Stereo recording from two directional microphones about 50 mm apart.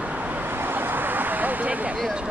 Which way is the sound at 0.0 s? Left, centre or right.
Right.